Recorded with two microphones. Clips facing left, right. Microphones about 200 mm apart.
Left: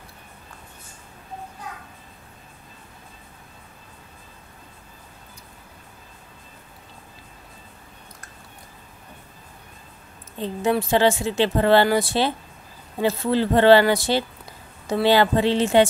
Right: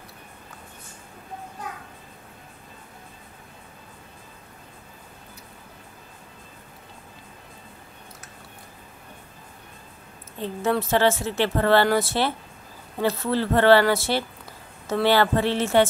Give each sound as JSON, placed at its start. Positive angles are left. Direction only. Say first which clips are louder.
{"t": 10.4, "sound": "a woman's voice", "louder": "left 2 dB", "side_deg": 15}